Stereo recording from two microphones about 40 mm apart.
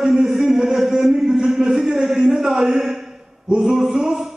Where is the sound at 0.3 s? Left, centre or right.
Centre.